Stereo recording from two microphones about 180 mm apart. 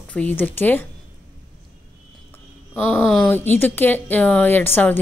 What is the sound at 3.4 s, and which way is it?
A woman's voice, 10° left (ahead or behind).